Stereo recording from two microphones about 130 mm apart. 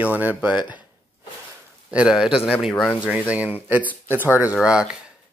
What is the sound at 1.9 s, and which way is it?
A man's voice, 5° right (ahead or behind).